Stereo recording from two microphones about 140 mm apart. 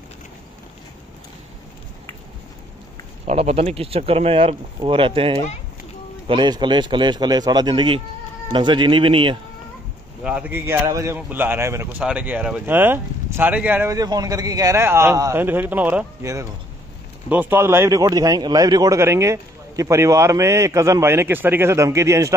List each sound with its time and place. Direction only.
3.3 s speech: 50° right (ahead or behind)
10.2 s speech: 10° right (ahead or behind)
10.6 s speech: 20° right (ahead or behind)
13.9 s speech: 25° right (ahead or behind)